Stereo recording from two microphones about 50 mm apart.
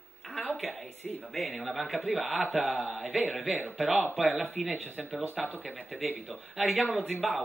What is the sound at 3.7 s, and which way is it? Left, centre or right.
Speech, centre.